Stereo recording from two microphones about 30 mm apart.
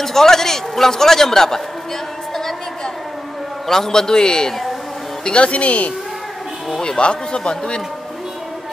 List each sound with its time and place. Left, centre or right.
0.0 s a man's voice: centre
3.6 s a man's voice: centre
5.2 s speech: left
7.0 s a man's voice: left